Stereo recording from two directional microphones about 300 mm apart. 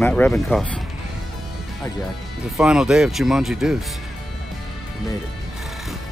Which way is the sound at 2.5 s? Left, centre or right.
Centre.